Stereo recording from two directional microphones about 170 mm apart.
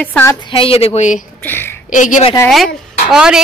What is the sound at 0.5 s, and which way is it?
Speech, 35° left (ahead or behind).